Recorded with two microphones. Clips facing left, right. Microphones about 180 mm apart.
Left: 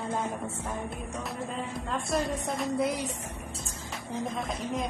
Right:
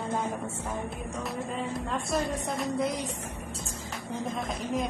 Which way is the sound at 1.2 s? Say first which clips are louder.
Right 3 dB; centre (ahead or behind).